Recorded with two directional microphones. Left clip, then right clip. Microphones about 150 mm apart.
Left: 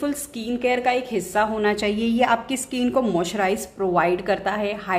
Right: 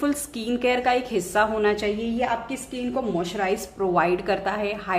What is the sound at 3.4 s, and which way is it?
A woman's voice, 20° left (ahead or behind).